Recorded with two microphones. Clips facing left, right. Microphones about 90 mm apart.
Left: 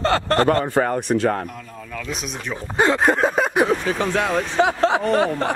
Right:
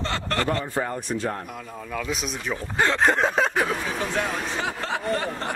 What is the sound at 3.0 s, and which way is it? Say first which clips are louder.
Speech: left 3 dB; 5° left (ahead or behind).